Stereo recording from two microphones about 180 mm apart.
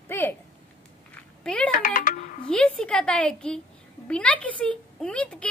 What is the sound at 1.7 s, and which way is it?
Speech, 45° left (ahead or behind).